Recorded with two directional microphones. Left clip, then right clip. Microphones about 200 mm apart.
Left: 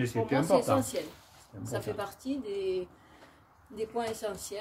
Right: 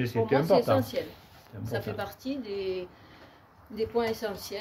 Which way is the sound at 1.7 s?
10° left (ahead or behind).